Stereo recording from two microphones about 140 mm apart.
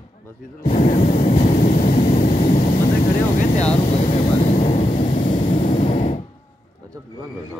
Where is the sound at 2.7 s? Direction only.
85° left.